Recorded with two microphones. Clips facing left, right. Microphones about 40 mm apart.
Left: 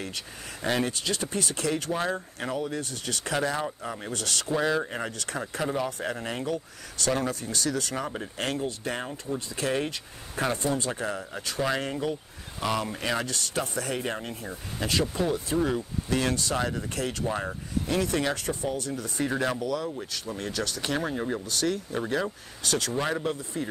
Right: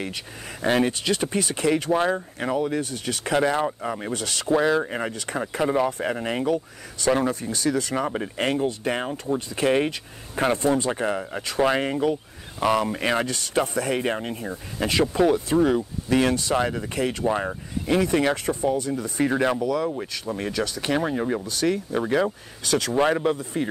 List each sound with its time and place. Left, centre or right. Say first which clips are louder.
0.0 s speech: right 4 dB; right